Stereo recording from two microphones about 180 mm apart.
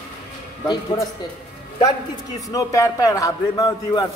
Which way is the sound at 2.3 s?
20° left (ahead or behind).